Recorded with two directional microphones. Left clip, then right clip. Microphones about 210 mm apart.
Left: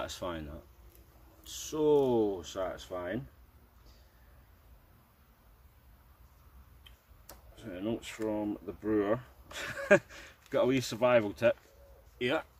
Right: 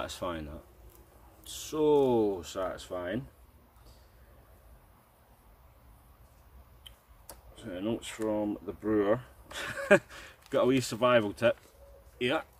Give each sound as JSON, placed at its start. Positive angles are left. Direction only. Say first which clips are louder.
{"t": 0.0, "sound": "speech", "louder": "right 2 dB", "side_deg": 0}
{"t": 6.8, "sound": "speech", "louder": "right 6 dB", "side_deg": 0}